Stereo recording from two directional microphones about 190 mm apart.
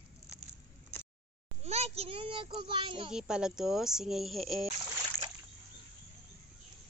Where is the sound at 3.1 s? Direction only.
5° right (ahead or behind).